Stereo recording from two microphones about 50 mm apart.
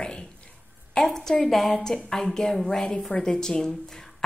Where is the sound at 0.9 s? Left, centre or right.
Centre.